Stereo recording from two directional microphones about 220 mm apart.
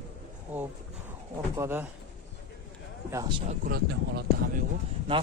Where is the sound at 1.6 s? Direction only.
10° right (ahead or behind).